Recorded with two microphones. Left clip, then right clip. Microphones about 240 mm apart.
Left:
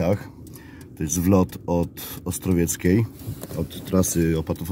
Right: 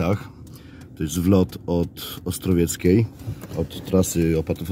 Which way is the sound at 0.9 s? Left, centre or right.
Centre.